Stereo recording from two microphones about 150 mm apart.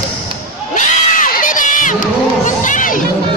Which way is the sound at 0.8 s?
65° left (ahead or behind).